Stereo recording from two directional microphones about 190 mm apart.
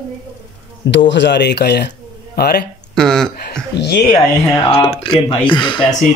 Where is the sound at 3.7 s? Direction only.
60° left (ahead or behind).